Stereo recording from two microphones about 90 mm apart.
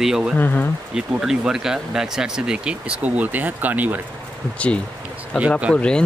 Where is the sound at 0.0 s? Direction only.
5° right (ahead or behind).